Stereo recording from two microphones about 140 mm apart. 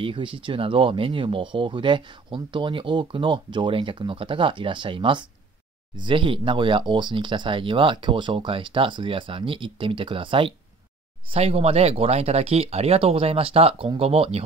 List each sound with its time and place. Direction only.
0.0 s speech: 40° right (ahead or behind)